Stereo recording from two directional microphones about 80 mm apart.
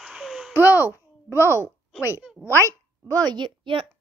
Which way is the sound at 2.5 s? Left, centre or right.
Right.